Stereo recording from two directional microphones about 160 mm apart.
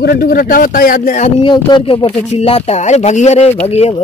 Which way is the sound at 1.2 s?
30° left (ahead or behind).